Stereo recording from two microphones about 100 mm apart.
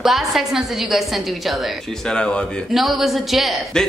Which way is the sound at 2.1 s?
10° left (ahead or behind).